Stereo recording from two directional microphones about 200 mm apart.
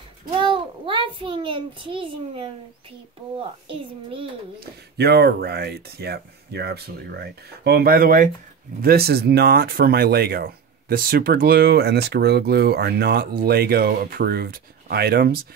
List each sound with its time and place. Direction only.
0.3 s a child's voice: 25° right (ahead or behind)
4.9 s speech: 55° right (ahead or behind)